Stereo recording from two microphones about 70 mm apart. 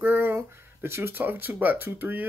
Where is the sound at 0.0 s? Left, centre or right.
Right.